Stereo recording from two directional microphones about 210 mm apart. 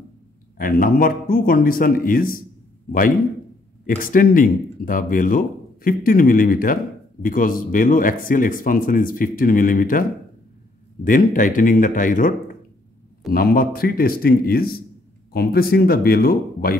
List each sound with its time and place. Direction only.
0.6 s speech: 45° left (ahead or behind)
4.0 s speech: 40° left (ahead or behind)
11.1 s speech: 40° left (ahead or behind)